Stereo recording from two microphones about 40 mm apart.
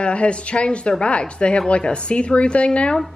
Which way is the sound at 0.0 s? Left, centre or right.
Left.